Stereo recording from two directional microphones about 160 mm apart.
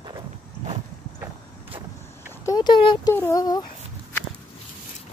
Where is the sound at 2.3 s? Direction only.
25° left (ahead or behind).